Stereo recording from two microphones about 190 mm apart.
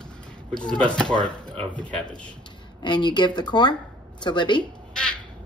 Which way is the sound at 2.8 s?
25° left (ahead or behind).